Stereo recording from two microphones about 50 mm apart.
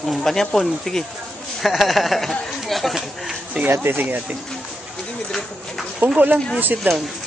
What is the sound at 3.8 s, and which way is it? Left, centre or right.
Speech, right.